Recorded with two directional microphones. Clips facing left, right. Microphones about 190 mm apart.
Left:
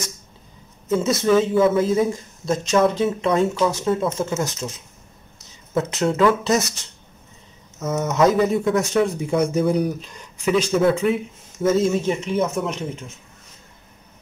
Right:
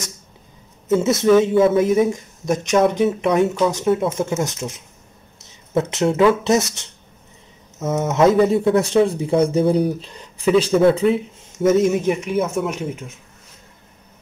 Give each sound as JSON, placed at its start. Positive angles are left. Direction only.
{"t": 0.8, "sound": "speech", "side_deg": -20}
{"t": 5.4, "sound": "a sound", "side_deg": -25}
{"t": 6.2, "sound": "speech", "side_deg": -20}
{"t": 11.6, "sound": "speech", "side_deg": -20}